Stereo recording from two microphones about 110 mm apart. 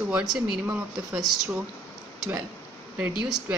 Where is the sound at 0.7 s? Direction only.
15° right (ahead or behind).